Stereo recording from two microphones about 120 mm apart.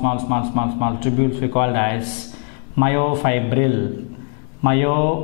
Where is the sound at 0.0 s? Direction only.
10° left (ahead or behind).